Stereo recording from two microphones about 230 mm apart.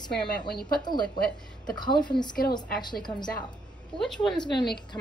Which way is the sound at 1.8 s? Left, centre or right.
Centre.